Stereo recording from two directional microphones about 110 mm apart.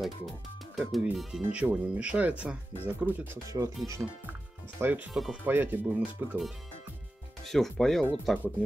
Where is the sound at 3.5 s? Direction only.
40° right (ahead or behind).